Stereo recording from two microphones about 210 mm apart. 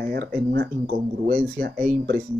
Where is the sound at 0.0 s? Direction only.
45° right (ahead or behind).